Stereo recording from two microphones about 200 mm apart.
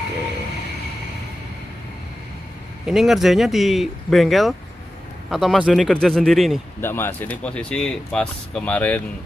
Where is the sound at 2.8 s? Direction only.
Centre (ahead or behind).